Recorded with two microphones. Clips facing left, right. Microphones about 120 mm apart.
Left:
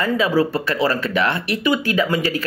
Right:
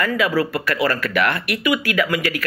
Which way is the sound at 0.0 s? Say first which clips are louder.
Left 2 dB; 25° left (ahead or behind).